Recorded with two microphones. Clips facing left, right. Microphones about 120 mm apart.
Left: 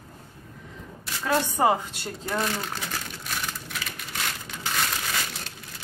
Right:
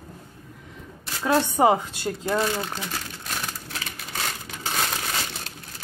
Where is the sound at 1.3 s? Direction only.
15° right (ahead or behind).